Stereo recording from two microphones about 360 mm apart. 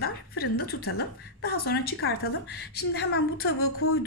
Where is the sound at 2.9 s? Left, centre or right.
Left.